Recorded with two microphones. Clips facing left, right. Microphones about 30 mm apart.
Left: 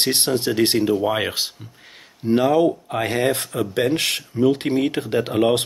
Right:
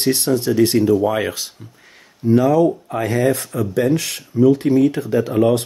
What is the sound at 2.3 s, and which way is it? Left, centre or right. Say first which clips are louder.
Speech: right 3 dB; left.